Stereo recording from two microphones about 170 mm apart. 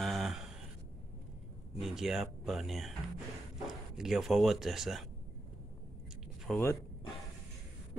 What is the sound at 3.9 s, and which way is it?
Speech, centre (ahead or behind).